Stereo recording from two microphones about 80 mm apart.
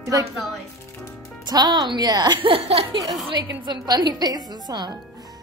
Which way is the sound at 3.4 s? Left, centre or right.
Right.